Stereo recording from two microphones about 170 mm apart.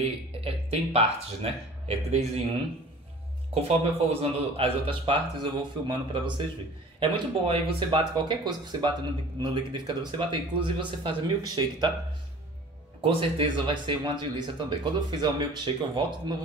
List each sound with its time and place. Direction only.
0.4 s speech: 35° right (ahead or behind)
3.6 s speech: 35° right (ahead or behind)
13.0 s speech: 30° right (ahead or behind)